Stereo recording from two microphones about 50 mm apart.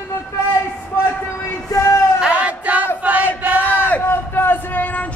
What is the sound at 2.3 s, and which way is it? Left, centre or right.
Music, right.